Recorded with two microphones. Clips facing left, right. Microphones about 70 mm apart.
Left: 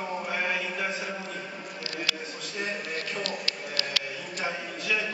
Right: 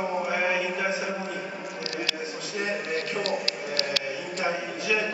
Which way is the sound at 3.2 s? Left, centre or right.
Right.